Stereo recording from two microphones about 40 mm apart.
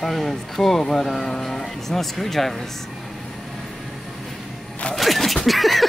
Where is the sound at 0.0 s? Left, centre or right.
Centre.